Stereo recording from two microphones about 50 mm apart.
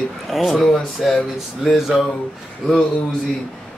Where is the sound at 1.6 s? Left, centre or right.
Centre.